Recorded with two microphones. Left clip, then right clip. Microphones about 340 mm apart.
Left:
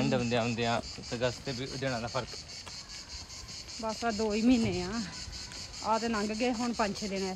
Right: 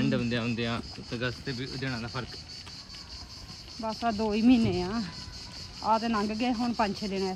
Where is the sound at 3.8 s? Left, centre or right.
Centre.